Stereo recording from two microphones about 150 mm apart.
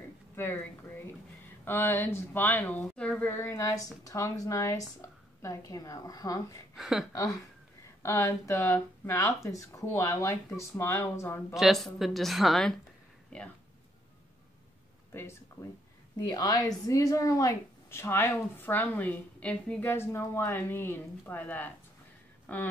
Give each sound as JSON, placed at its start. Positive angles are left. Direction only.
{"t": 0.4, "sound": "a woman's voice", "side_deg": 10}
{"t": 6.7, "sound": "speech", "side_deg": -5}
{"t": 7.1, "sound": "a woman's voice", "side_deg": 25}
{"t": 11.5, "sound": "a woman's voice", "side_deg": 0}
{"t": 16.2, "sound": "speech", "side_deg": 30}